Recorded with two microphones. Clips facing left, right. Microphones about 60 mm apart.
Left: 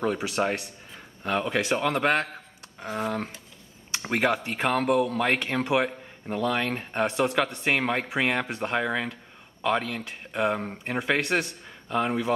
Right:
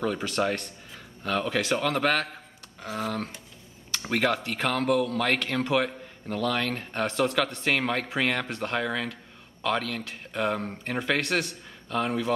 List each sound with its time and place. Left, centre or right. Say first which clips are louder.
0.0 s speech: left 1 dB; centre